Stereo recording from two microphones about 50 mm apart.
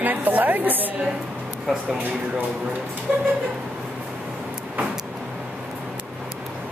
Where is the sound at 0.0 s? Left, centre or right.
Right.